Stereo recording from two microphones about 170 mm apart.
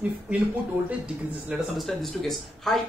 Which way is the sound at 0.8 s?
5° right (ahead or behind).